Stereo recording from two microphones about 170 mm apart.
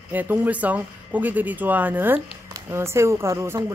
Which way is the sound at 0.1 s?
10° right (ahead or behind).